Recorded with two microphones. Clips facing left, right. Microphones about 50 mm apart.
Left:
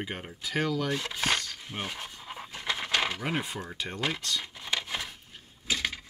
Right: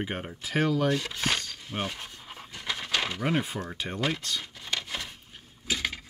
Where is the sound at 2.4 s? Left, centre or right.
Centre.